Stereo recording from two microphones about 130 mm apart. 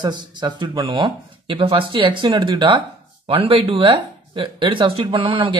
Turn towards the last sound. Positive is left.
turn(degrees=-40)  # may be behind; listen again after turning